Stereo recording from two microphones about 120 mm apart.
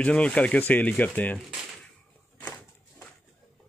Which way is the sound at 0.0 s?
10° left (ahead or behind).